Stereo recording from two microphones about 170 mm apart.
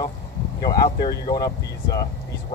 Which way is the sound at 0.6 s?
25° left (ahead or behind).